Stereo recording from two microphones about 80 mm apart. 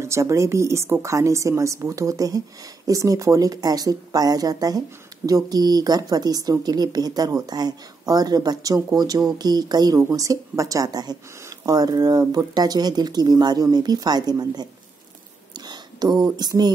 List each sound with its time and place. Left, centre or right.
0.0 s speech: right
10.0 s speech: right
15.5 s a sound: right
16.3 s speech: right